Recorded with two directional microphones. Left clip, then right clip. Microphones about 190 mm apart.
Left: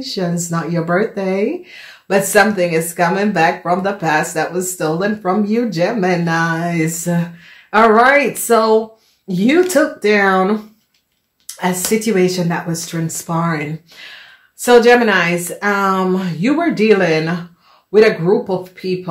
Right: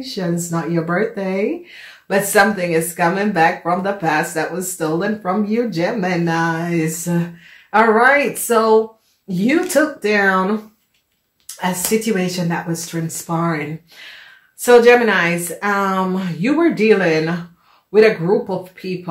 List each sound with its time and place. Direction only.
0.0 s speech: 35° left (ahead or behind)
11.6 s speech: 45° left (ahead or behind)